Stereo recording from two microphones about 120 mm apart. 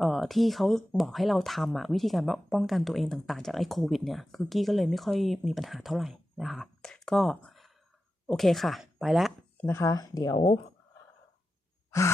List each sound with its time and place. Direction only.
0.0 s speech: centre (ahead or behind)
9.6 s speech: 20° left (ahead or behind); by 10.6 s 40° left (ahead or behind)